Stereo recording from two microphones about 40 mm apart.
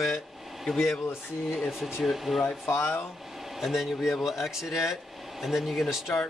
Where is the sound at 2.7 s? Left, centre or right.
Left.